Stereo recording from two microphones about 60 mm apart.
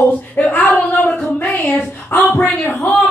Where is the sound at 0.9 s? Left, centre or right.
Centre.